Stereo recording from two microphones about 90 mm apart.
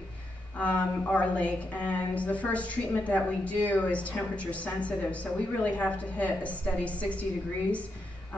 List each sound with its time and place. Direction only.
0.6 s a woman's voice: 15° left (ahead or behind)